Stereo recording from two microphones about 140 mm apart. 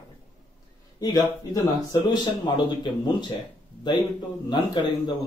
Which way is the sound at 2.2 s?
30° left (ahead or behind).